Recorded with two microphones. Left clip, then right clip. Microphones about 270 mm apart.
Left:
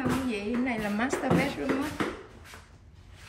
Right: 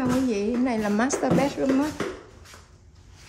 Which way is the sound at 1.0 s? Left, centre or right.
Centre.